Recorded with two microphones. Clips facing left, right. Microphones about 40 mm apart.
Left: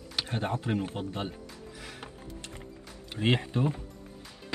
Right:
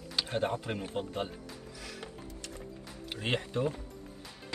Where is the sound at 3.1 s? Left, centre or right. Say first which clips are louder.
Left 5 dB; left.